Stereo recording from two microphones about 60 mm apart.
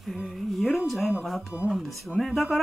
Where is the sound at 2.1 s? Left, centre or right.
Centre.